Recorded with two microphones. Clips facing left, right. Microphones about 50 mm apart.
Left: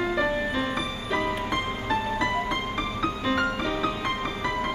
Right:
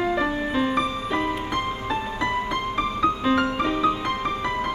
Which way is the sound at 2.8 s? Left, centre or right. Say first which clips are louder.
Right 5 dB; centre.